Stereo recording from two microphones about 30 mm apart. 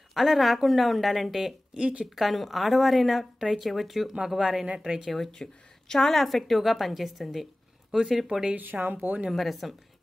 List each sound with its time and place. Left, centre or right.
0.1 s speech: centre
1.8 s a woman's voice: right
2.1 s speech: centre
4.7 s speech: right
5.1 s speech: centre
8.5 s speech: right
9.3 s speech: centre